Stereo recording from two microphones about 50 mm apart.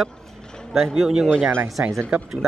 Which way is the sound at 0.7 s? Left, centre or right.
Centre.